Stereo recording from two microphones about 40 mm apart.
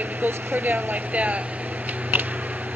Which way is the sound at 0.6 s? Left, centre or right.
Right.